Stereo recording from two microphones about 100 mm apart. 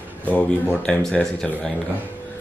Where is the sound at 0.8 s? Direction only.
10° left (ahead or behind).